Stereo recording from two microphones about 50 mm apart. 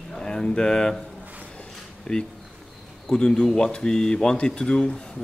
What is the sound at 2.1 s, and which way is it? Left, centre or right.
A man's voice, centre.